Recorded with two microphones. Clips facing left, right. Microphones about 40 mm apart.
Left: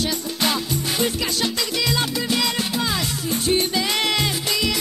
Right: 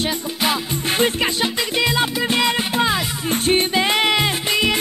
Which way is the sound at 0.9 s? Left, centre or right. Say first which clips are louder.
Right 6 dB; right.